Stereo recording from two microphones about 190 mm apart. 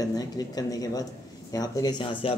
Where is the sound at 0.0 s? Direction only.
20° left (ahead or behind).